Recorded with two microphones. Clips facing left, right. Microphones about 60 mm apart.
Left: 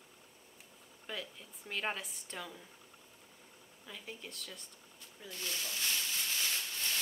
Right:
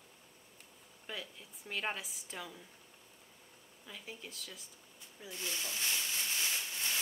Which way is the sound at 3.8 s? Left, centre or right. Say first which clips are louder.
Left 1 dB; centre.